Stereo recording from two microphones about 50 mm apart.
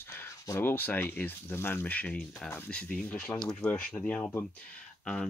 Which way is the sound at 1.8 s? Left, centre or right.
Left.